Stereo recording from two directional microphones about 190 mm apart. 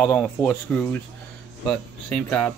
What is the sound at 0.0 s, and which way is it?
Speech, 5° left (ahead or behind).